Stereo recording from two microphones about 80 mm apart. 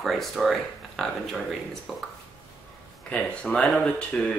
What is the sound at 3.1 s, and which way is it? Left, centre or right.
Speech, centre.